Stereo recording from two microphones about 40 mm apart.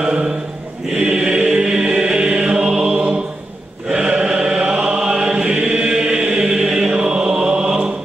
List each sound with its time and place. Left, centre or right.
0.0 s a man's voice: right
0.9 s chant: right
6.2 s choir: right
6.9 s chant: right